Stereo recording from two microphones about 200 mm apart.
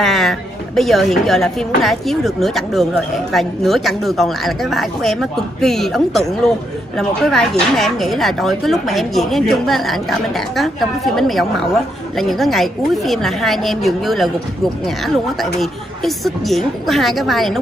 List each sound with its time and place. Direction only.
0.0 s a woman's voice: centre (ahead or behind)
15.6 s a woman's voice: centre (ahead or behind)